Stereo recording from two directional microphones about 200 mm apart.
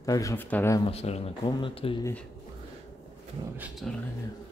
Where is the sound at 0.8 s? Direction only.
30° left (ahead or behind).